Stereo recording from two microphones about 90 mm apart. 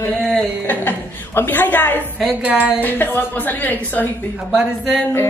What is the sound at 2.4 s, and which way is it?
Speech, 15° right (ahead or behind).